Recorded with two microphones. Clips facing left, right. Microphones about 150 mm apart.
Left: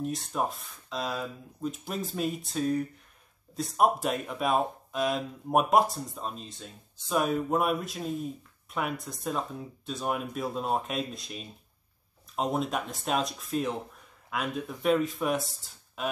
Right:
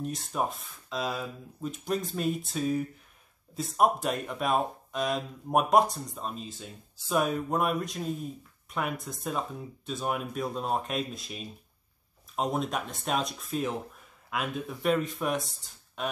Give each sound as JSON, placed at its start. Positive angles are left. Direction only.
{"t": 0.0, "sound": "speech", "side_deg": 0}